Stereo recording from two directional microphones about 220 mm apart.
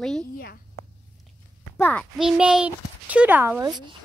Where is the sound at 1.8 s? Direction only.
5° left (ahead or behind).